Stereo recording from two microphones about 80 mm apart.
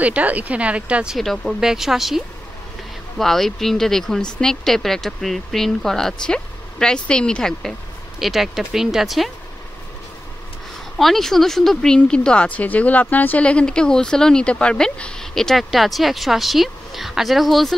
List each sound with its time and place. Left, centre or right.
0.0 s speech: centre
1.1 s speech: centre
8.2 s speech: centre
11.0 s speech: centre